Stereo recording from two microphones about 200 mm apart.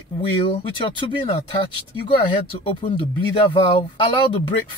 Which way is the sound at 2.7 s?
25° left (ahead or behind).